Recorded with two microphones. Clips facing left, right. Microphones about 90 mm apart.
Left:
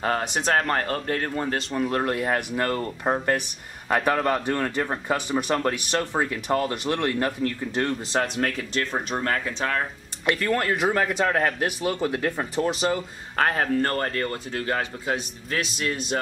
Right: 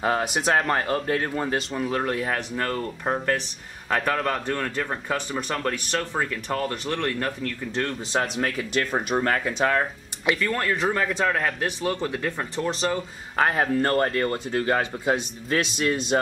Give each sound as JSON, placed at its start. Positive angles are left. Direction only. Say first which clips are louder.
{"t": 0.0, "sound": "a man's voice", "louder": "right 1 dB", "side_deg": -5}
{"t": 8.1, "sound": "speech", "louder": "even", "side_deg": -5}
{"t": 10.2, "sound": "a man's voice", "louder": "left 1 dB", "side_deg": 0}
{"t": 13.4, "sound": "speech", "louder": "right 1 dB", "side_deg": -5}
{"t": 13.7, "sound": "speech", "louder": "right 3 dB", "side_deg": -20}
{"t": 14.8, "sound": "speech", "louder": "right 3 dB", "side_deg": -20}
{"t": 15.5, "sound": "speech", "louder": "right 4 dB", "side_deg": -30}